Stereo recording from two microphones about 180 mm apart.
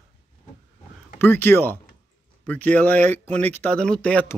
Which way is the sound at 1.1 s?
10° left (ahead or behind).